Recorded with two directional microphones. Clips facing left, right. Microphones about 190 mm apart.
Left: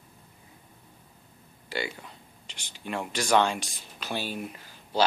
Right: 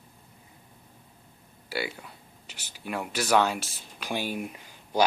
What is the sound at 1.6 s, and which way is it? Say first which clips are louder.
Speech: right 1 dB; 10° right (ahead or behind).